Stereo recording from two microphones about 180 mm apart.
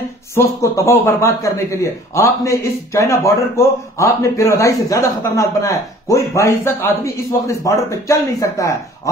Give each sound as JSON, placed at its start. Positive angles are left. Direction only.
{"t": 0.3, "sound": "a man's voice", "side_deg": 15}